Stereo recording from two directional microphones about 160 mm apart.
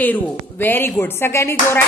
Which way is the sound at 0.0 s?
10° left (ahead or behind).